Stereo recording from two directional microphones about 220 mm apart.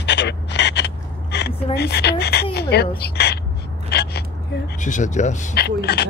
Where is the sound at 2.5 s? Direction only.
45° left (ahead or behind).